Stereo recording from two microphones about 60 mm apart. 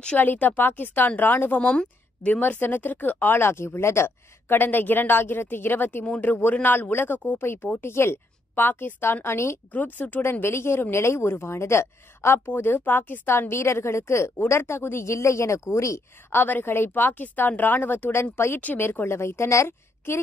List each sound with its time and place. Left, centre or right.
0.2 s speech: left
1.6 s a woman's voice: left
2.4 s speech: left
9.7 s speech: left
10.4 s speech: left
16.3 s speech: left
20.0 s a woman's voice: left